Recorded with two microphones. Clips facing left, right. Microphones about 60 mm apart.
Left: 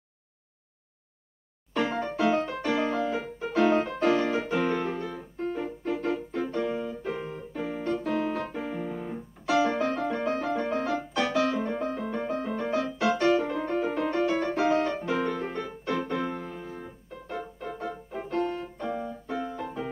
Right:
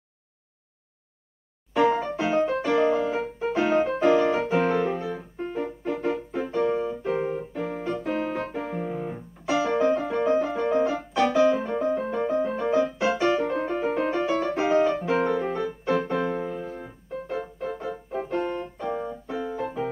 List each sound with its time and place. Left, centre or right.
1.7 s music: centre
3.0 s music: centre
4.0 s piano: centre
6.0 s music: centre
6.4 s music: centre
6.9 s keyboard: centre
7.2 s keyboard: right
7.5 s keyboard: centre
7.9 s piano: centre
9.8 s music: centre
17.6 s keyboard: centre
18.4 s music: centre